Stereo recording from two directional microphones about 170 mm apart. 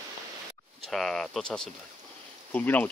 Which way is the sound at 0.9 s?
5° left (ahead or behind).